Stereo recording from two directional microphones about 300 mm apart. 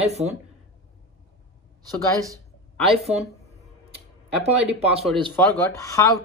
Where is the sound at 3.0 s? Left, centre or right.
Right.